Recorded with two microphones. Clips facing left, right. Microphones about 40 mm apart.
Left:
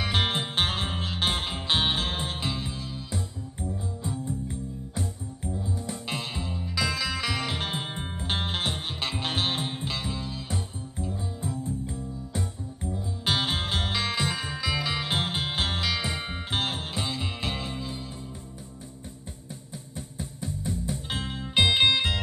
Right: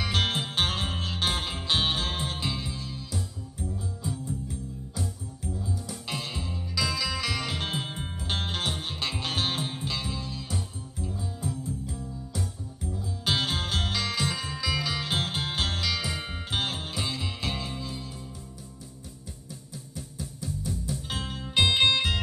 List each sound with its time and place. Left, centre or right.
0.0 s music: centre
3.1 s music: left
11.1 s music: left; by 18.0 s centre
20.0 s music: left; by 22.2 s centre